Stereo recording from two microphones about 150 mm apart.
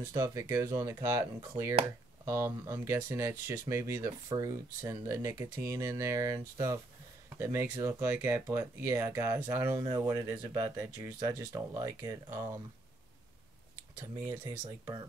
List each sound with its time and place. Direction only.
0.1 s speech: 20° right (ahead or behind)
14.2 s speech: 20° right (ahead or behind)